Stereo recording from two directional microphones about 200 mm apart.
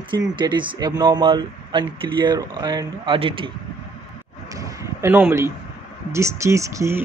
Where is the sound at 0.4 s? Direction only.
25° right (ahead or behind).